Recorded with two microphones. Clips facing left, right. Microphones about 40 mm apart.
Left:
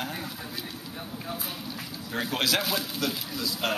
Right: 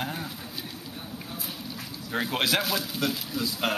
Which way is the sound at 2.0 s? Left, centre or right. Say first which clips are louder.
Right 1 dB; centre.